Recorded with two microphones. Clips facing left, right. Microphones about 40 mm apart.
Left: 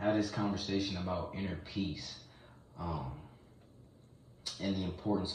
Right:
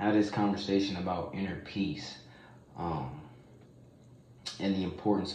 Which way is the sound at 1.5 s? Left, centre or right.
Right.